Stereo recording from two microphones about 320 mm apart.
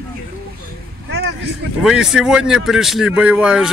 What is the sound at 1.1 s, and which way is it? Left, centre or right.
Vehicle, right.